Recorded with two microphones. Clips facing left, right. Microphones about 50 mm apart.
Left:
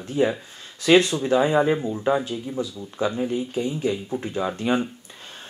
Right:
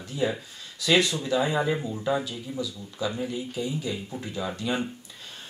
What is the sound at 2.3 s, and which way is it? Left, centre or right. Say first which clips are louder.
Speech: left 5 dB; left.